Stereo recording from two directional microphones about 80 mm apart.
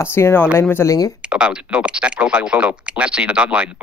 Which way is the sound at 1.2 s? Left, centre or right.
Centre.